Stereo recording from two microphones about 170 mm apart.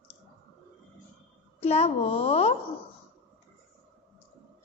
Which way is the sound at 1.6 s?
35° left (ahead or behind).